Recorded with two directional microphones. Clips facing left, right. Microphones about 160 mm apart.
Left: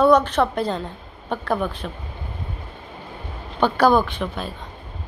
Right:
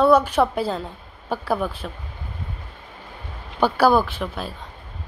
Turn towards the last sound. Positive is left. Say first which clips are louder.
# left 1 dB
turn(degrees=-5)  # may be behind; listen again after turning